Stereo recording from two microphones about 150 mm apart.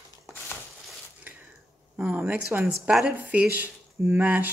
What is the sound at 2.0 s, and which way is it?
Speech, 10° right (ahead or behind).